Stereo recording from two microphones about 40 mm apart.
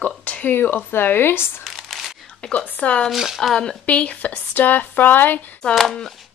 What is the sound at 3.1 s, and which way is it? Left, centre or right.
Speech, centre.